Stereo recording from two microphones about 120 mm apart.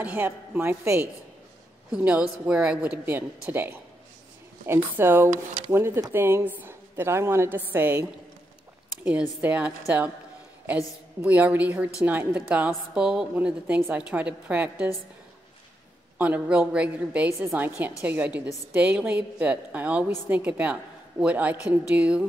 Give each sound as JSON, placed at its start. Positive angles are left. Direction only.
{"t": 0.0, "sound": "a woman's voice", "side_deg": -15}
{"t": 4.9, "sound": "a woman's voice", "side_deg": -20}
{"t": 9.4, "sound": "a woman's voice", "side_deg": -15}
{"t": 11.1, "sound": "a woman's voice", "side_deg": -15}
{"t": 16.2, "sound": "a woman's voice", "side_deg": -10}